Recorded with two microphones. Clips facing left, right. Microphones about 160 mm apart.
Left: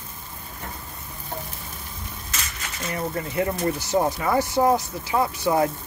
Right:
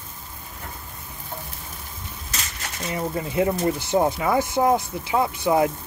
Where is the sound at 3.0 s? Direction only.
15° right (ahead or behind).